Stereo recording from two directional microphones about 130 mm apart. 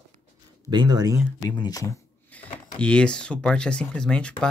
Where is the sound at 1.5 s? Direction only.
30° left (ahead or behind).